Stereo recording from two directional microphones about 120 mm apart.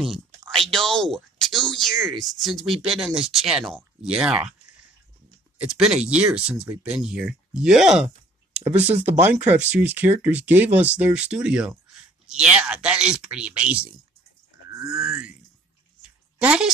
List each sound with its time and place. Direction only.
0.0 s speech: centre (ahead or behind)
5.6 s speech: 5° right (ahead or behind)
8.7 s speech: 65° right (ahead or behind)
9.0 s speech: 15° right (ahead or behind)
15.0 s speech: 5° right (ahead or behind)
16.0 s a sound: 10° right (ahead or behind)